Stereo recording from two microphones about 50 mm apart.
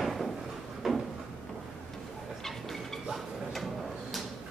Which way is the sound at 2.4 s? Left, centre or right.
Centre.